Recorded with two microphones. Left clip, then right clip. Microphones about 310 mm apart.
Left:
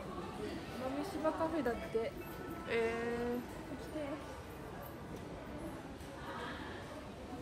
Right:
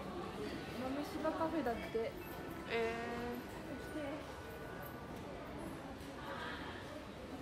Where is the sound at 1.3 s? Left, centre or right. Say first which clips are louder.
Left 3 dB; left.